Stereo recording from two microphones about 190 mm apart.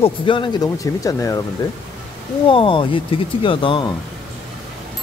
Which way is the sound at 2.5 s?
25° left (ahead or behind).